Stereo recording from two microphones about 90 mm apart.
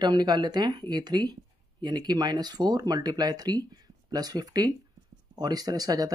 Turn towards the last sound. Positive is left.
turn(degrees=-45)  # may be behind; listen again after turning